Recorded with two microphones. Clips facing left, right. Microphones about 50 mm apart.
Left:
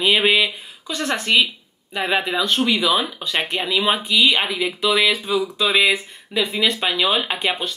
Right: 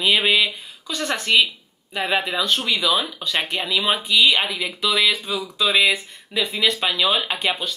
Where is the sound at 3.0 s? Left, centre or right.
Centre.